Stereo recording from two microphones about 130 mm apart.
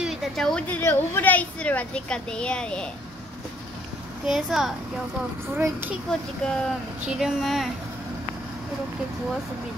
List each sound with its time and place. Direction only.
0.0 s a woman's voice: centre (ahead or behind)
4.3 s speech: centre (ahead or behind)
5.6 s a child's voice: 15° right (ahead or behind)
6.0 s speech: 5° left (ahead or behind)